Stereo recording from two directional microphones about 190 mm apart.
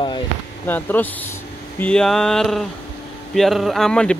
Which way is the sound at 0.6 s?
10° left (ahead or behind).